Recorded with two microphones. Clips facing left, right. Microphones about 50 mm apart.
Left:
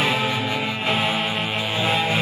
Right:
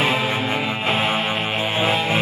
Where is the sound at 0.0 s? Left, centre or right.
Centre.